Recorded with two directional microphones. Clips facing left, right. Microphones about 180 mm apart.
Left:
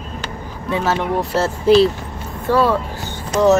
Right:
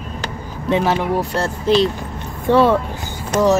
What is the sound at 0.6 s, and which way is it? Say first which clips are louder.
Speech: right 2 dB; 20° right (ahead or behind).